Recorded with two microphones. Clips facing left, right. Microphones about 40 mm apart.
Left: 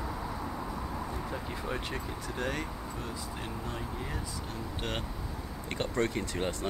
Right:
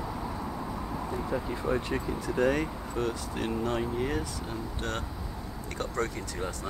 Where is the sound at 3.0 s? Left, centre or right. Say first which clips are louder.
Right 11 dB; right.